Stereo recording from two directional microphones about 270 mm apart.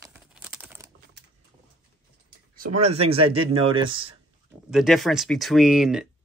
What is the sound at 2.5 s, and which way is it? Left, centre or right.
Speech, right.